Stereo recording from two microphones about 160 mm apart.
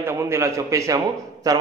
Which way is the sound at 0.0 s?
15° right (ahead or behind).